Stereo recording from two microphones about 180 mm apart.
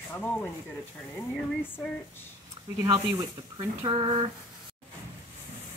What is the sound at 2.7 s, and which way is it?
Speech, 20° right (ahead or behind).